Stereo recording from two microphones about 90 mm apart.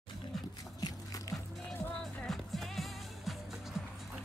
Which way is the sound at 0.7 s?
45° left (ahead or behind).